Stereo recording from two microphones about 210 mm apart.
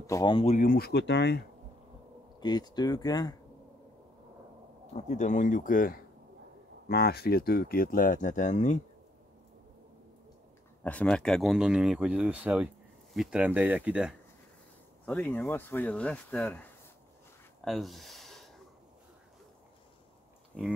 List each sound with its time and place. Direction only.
0.0 s speech: 15° left (ahead or behind)
0.6 s speech: 45° left (ahead or behind)
2.4 s speech: 20° left (ahead or behind)
4.9 s speech: 35° left (ahead or behind)
10.8 s speech: 5° left (ahead or behind)
15.0 s speech: 5° left (ahead or behind)
17.6 s speech: centre (ahead or behind)